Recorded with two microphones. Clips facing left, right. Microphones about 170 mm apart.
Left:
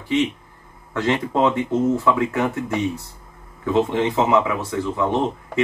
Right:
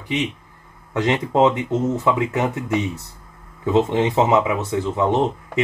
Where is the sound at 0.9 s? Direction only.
20° right (ahead or behind).